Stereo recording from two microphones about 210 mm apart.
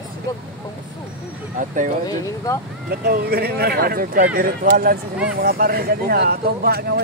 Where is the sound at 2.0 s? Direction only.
15° left (ahead or behind).